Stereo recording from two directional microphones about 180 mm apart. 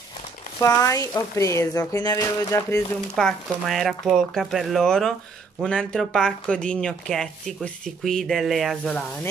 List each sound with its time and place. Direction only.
0.6 s speech: 20° left (ahead or behind)
3.2 s speech: centre (ahead or behind)